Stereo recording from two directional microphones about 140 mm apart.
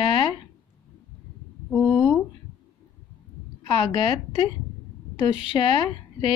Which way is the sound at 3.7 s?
40° left (ahead or behind).